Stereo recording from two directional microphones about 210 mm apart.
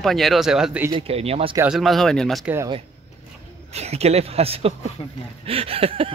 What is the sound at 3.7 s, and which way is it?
Speech, 30° right (ahead or behind).